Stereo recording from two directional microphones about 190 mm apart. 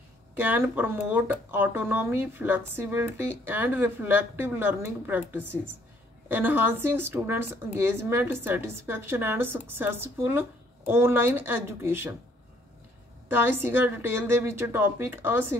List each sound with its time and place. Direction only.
0.4 s speech: 10° right (ahead or behind)
13.3 s speech: 10° right (ahead or behind)